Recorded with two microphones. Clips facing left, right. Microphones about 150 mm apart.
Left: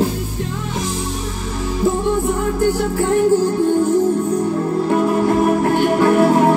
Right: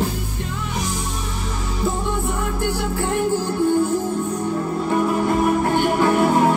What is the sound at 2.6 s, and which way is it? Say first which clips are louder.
Music: left 6 dB; 40° left (ahead or behind).